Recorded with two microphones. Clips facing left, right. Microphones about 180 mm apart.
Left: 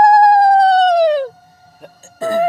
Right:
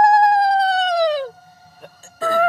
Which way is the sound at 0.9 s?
55° left (ahead or behind).